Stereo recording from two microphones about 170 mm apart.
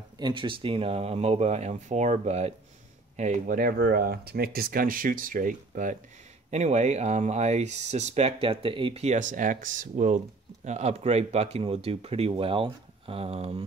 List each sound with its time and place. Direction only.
0.2 s speech: 30° right (ahead or behind)